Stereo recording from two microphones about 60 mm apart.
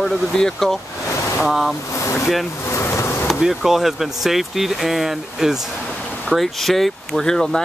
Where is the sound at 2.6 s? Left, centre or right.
Left.